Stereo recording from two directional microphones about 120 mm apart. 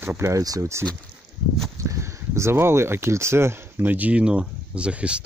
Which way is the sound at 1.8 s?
25° right (ahead or behind).